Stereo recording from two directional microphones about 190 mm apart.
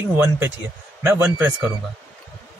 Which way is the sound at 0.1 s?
10° right (ahead or behind).